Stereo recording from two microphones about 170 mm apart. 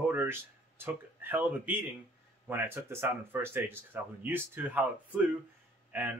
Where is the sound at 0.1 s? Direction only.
10° right (ahead or behind).